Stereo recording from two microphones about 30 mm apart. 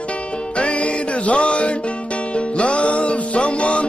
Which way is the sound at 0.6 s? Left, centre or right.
Left.